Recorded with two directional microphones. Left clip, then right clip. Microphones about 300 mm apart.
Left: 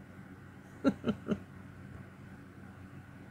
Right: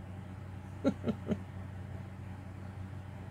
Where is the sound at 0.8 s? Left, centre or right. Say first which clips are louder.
Left 1 dB; centre.